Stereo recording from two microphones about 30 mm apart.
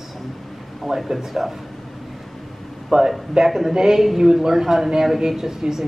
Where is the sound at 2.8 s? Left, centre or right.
Centre.